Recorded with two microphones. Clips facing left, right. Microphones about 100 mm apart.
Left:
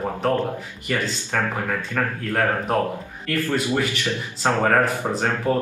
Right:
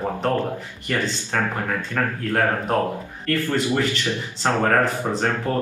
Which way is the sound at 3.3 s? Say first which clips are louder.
Right 1 dB; 15° left (ahead or behind).